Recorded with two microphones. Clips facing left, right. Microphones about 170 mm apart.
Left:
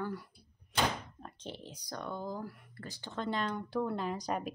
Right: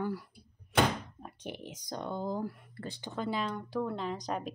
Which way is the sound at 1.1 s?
10° right (ahead or behind).